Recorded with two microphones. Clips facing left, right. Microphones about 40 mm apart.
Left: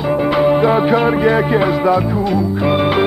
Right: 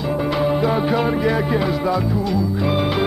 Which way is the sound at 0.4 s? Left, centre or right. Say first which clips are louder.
Left 7 dB; left.